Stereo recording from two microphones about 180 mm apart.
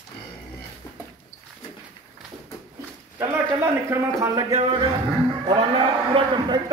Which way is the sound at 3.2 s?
15° right (ahead or behind).